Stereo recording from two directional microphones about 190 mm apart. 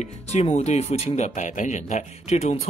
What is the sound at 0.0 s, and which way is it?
Speech, 35° left (ahead or behind).